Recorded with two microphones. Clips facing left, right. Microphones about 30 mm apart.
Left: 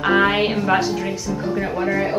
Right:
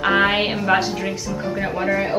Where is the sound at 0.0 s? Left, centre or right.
Centre.